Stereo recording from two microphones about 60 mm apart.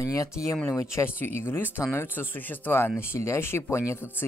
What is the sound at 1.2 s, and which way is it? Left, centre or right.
Speech, left.